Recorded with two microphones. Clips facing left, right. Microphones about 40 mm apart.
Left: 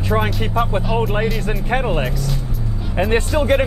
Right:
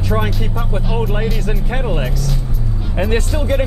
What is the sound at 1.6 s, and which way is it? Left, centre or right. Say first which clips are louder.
Speech: left 4 dB; left.